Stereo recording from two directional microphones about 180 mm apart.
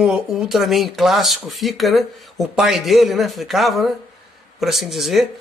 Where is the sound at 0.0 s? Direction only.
5° right (ahead or behind).